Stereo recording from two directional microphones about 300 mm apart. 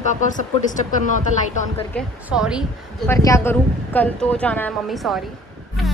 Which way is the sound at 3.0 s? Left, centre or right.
Centre.